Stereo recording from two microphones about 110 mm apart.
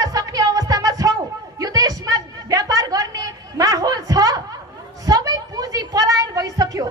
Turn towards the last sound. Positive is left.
turn(degrees=-30)  # may be behind; listen again after turning